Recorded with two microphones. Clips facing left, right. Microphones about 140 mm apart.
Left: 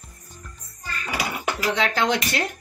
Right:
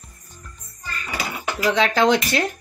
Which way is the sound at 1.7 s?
90° right.